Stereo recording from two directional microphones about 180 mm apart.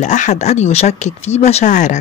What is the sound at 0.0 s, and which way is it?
Speech, 40° left (ahead or behind).